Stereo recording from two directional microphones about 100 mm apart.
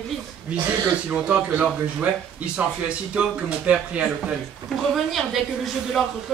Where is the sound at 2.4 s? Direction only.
10° right (ahead or behind).